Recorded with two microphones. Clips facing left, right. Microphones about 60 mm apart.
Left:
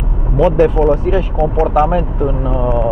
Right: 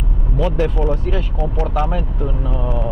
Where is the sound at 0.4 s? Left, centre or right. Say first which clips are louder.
Left 9 dB; left.